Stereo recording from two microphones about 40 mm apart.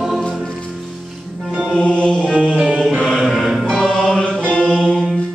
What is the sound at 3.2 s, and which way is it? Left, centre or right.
Music, centre.